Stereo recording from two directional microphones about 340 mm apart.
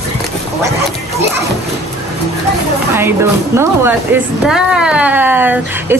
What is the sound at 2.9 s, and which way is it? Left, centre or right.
Speech, centre.